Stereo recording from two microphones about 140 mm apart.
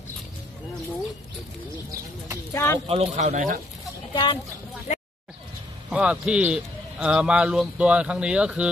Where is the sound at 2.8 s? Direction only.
50° right (ahead or behind).